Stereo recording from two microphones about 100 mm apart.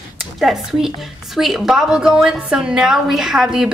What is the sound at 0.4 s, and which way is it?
A woman's voice, 5° right (ahead or behind).